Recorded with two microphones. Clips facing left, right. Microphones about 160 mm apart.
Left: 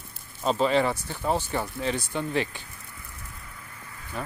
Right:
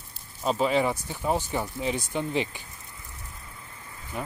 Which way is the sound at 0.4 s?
5° right (ahead or behind).